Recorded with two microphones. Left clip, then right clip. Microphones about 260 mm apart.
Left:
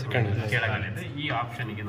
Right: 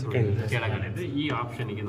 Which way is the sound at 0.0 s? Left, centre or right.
Centre.